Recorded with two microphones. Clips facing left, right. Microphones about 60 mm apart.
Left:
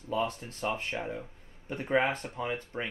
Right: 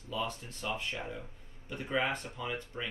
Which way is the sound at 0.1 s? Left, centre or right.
Left.